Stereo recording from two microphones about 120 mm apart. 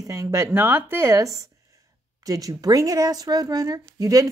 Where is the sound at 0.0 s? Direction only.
25° right (ahead or behind).